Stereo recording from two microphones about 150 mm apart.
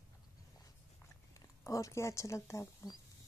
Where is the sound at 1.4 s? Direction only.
20° left (ahead or behind).